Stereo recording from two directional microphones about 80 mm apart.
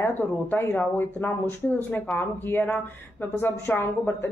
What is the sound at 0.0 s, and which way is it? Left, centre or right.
Speech, left.